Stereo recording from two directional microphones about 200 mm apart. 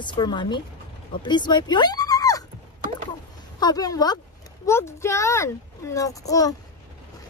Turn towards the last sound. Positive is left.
turn(degrees=15)  # may be behind; listen again after turning